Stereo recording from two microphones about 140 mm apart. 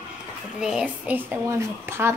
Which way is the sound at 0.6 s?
5° right (ahead or behind).